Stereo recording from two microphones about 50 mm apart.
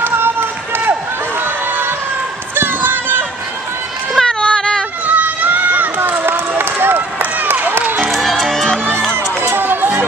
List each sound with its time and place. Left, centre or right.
0.0 s run: right
1.4 s music: right
2.5 s a sound: right
4.2 s female singing: centre
5.0 s run: right
5.9 s run: right
8.1 s music: centre
9.6 s run: right